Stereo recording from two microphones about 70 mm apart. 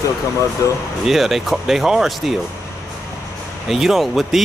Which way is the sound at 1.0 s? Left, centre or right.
Centre.